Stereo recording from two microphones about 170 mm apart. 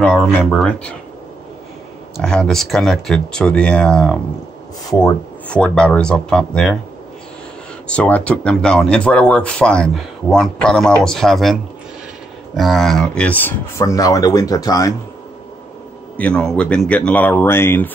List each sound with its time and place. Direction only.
0.5 s speech: 5° left (ahead or behind)
2.1 s speech: 5° left (ahead or behind)
5.5 s speech: 5° left (ahead or behind)
7.9 s speech: 5° left (ahead or behind)
16.2 s speech: 5° left (ahead or behind)